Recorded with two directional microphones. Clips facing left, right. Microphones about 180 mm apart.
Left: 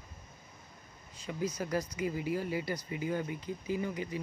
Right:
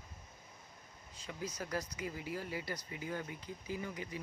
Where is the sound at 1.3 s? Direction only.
10° left (ahead or behind).